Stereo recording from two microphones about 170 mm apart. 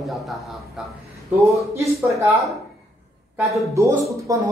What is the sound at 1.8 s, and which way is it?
Speech, 15° right (ahead or behind).